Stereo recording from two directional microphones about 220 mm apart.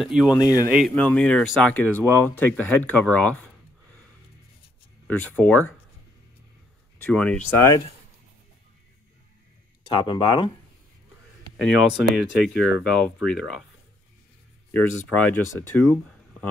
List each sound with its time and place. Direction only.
0.0 s speech: centre (ahead or behind)
0.3 s speech: 15° left (ahead or behind)
0.7 s speech: centre (ahead or behind)
5.0 s speech: 5° left (ahead or behind)
7.0 s speech: 5° left (ahead or behind)
9.9 s speech: 20° left (ahead or behind)
11.5 s speech: centre (ahead or behind)
15.1 s speech: 5° left (ahead or behind)
15.9 s a sound: 5° left (ahead or behind)